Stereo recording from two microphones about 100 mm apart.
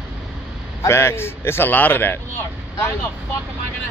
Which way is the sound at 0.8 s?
25° left (ahead or behind).